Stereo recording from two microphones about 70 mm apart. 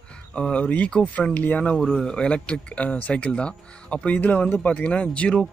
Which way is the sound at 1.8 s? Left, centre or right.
Centre.